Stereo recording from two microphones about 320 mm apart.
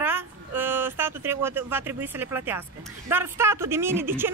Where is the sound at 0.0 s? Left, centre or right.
Centre.